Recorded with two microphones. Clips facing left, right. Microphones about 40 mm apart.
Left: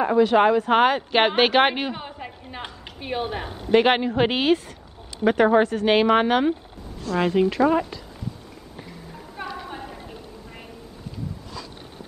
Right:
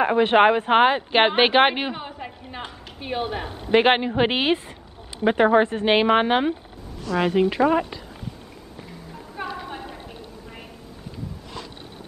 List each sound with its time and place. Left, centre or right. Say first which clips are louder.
0.0 s speech: right 1 dB; right; by 3.4 s centre
3.4 s speech: even; right
7.1 s a woman's voice: even; right
7.3 s speech: even; right
9.4 s a sound: right 2 dB; centre